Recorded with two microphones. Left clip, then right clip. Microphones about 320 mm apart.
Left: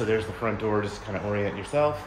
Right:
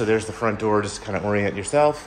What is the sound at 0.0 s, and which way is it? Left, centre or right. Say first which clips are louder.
Speech: right 5 dB; centre.